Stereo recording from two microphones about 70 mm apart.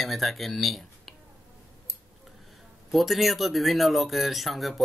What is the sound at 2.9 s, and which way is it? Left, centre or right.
Speech, centre.